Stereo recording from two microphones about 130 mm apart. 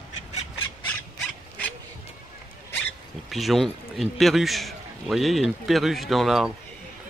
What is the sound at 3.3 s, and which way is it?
A man's voice, centre (ahead or behind).